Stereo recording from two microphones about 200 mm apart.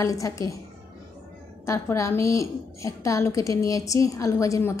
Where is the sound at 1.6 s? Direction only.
15° left (ahead or behind).